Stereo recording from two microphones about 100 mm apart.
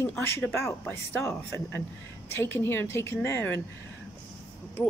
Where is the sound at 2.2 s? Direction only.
25° left (ahead or behind).